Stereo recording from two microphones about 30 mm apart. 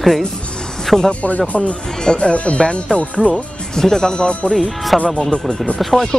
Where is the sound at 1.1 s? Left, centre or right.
Left.